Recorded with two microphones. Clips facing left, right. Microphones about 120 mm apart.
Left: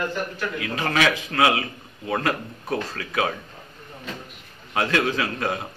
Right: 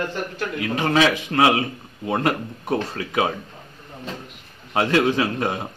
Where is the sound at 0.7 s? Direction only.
25° right (ahead or behind).